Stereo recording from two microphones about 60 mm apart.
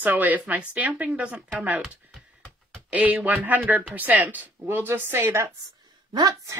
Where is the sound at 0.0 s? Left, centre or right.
Right.